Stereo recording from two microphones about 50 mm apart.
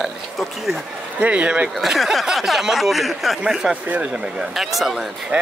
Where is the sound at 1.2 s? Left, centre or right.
Right.